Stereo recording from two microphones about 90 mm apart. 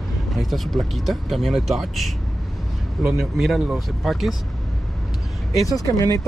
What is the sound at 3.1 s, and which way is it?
Speech, centre (ahead or behind).